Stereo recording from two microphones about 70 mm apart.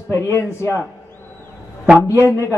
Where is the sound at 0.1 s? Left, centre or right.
Left.